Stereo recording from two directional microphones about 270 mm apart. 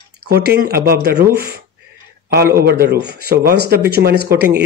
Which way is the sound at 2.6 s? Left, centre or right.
Right.